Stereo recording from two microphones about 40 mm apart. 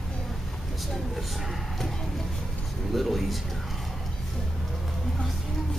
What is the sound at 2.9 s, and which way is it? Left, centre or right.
Speech, centre.